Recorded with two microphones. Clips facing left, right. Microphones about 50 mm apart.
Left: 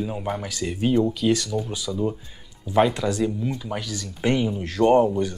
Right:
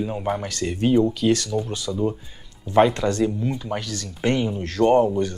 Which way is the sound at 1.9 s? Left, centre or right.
Centre.